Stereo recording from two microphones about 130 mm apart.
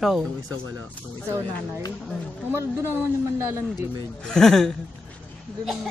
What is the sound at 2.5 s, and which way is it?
Speech, 20° right (ahead or behind).